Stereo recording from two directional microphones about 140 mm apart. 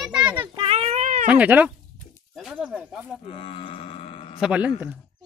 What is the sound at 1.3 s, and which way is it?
Speech, 10° right (ahead or behind).